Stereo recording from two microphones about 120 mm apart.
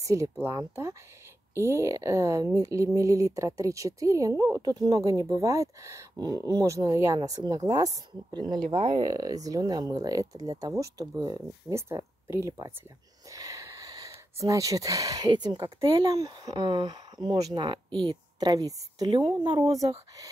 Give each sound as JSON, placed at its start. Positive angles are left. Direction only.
{"t": 0.0, "sound": "speech", "side_deg": -25}
{"t": 13.3, "sound": "a sound", "side_deg": -30}
{"t": 14.4, "sound": "a woman's voice", "side_deg": -25}